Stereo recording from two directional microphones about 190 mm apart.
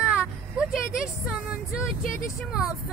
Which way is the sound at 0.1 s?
5° right (ahead or behind).